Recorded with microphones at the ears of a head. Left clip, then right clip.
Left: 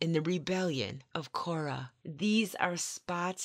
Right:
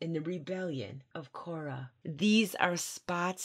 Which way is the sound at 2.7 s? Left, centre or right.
Centre.